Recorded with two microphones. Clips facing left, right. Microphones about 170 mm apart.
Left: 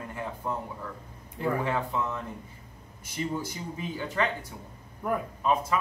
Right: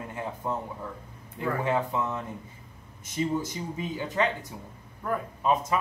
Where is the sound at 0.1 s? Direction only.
20° right (ahead or behind).